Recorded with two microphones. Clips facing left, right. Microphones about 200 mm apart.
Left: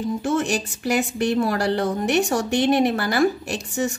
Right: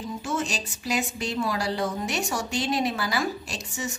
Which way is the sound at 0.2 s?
60° left (ahead or behind).